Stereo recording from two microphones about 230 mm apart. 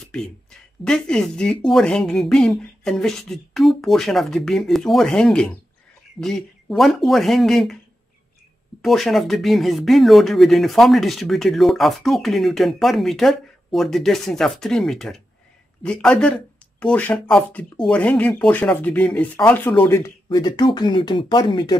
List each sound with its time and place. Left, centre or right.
0.0 s speech: centre
8.8 s speech: centre